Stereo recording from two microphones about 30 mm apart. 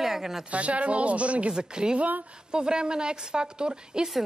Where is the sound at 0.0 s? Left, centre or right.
Centre.